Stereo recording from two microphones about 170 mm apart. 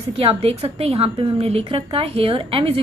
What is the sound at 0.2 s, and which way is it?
A woman's voice, 35° right (ahead or behind).